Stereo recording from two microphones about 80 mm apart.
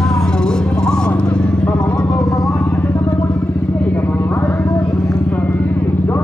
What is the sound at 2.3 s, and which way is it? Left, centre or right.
Vehicle, left.